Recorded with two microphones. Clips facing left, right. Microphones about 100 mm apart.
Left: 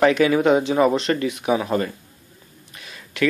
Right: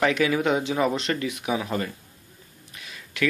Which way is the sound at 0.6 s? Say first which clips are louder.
Left 6 dB; 35° left (ahead or behind).